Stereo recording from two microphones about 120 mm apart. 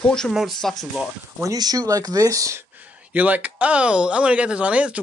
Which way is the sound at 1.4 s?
30° right (ahead or behind).